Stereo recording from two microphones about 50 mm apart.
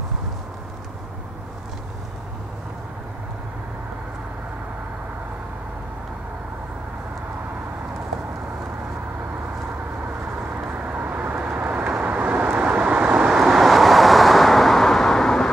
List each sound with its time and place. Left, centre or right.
10.9 s vehicle: right
13.4 s vehicle: centre